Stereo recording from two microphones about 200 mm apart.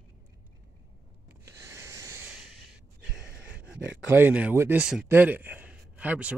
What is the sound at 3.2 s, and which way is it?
Speech, 5° right (ahead or behind).